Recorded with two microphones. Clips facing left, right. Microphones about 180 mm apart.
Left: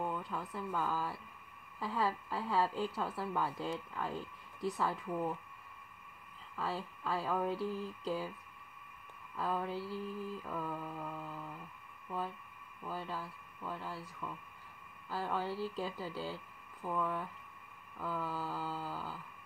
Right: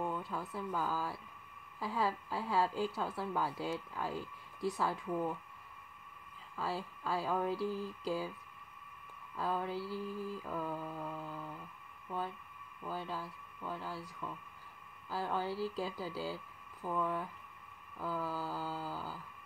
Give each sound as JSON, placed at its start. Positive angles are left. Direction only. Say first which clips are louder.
{"t": 0.0, "sound": "a woman's voice", "louder": "even", "side_deg": -5}
{"t": 6.5, "sound": "a woman's voice", "louder": "even", "side_deg": -5}
{"t": 9.4, "sound": "a woman's voice", "louder": "even", "side_deg": 0}
{"t": 12.8, "sound": "a woman's voice", "louder": "right 1 dB", "side_deg": 0}